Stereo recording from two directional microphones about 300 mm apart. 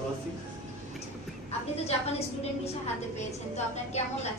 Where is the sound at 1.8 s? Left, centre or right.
Centre.